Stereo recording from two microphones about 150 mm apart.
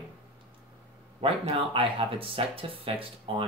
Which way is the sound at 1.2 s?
35° right (ahead or behind).